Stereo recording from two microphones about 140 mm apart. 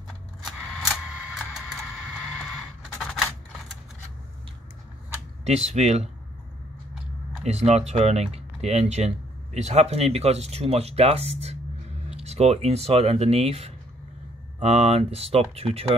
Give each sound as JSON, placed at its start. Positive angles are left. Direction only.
{"t": 0.5, "sound": "a sound", "side_deg": 0}
{"t": 5.4, "sound": "speech", "side_deg": -50}
{"t": 7.4, "sound": "speech", "side_deg": -50}